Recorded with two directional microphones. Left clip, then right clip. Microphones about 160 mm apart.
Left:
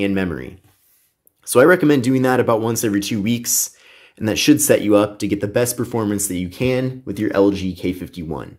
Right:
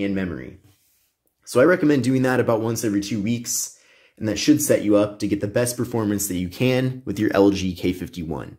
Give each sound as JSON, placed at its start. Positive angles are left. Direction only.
{"t": 0.0, "sound": "speech", "side_deg": 35}
{"t": 2.7, "sound": "speech", "side_deg": 30}